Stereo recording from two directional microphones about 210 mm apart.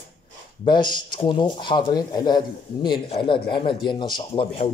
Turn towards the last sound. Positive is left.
turn(degrees=25)  # may be behind; listen again after turning